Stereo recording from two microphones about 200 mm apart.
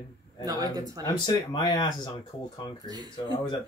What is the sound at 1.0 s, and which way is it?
Speech, 20° left (ahead or behind).